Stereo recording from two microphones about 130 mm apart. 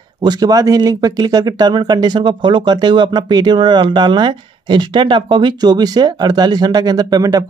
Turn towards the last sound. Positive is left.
turn(degrees=-30)  # may be behind; listen again after turning